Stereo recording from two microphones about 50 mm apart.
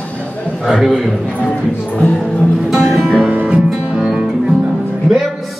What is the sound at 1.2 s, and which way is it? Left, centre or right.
Speech, left.